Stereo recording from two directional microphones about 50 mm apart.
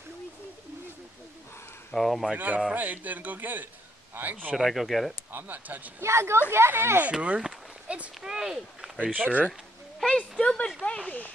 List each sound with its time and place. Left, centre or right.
2.0 s speech: centre
2.3 s a man's voice: right
4.6 s speech: centre
5.3 s a man's voice: right
5.9 s speech: right
7.1 s speech: right
9.0 s a man's voice: right
10.4 s speech: centre